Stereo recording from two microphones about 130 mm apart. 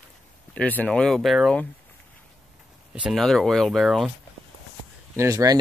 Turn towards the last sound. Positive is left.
turn(degrees=-25)  # may be behind; listen again after turning